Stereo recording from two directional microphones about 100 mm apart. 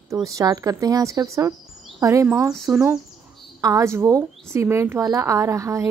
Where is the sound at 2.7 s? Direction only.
10° right (ahead or behind).